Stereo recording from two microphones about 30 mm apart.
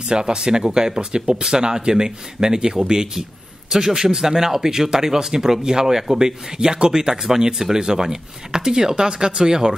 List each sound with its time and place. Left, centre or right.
0.1 s speech: right
7.5 s speech: centre
7.8 s speech: right